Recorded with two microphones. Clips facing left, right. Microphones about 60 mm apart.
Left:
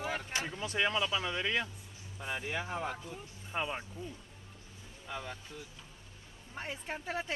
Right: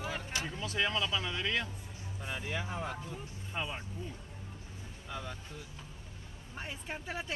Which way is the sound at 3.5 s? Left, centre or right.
Centre.